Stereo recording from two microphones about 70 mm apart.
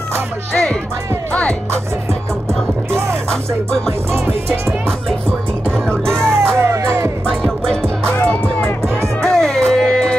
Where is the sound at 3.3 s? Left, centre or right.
Centre.